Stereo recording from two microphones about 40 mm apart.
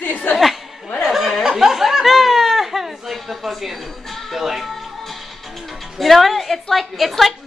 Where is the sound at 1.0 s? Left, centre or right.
Centre.